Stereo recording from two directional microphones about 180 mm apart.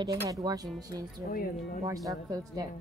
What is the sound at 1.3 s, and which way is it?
Speech, 55° left (ahead or behind).